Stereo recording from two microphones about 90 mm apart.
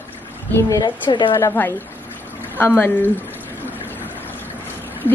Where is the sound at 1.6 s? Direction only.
20° left (ahead or behind).